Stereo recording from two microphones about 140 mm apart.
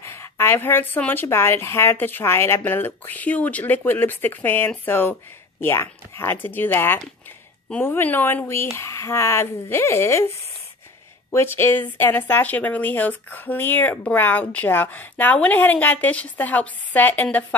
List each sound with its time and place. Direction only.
0.0 s a woman's voice: 20° left (ahead or behind)
11.3 s a woman's voice: 15° left (ahead or behind)